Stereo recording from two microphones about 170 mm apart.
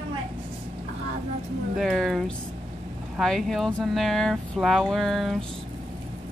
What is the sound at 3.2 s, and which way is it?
Speech, centre (ahead or behind).